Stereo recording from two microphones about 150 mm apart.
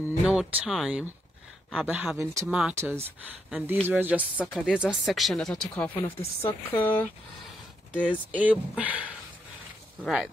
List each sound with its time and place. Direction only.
0.2 s speech: 5° right (ahead or behind)
2.7 s speech: 15° right (ahead or behind); by 5.9 s 5° left (ahead or behind)
5.9 s speech: 15° left (ahead or behind)
8.1 s speech: 10° right (ahead or behind)